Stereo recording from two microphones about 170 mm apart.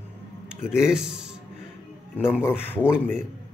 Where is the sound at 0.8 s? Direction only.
5° right (ahead or behind).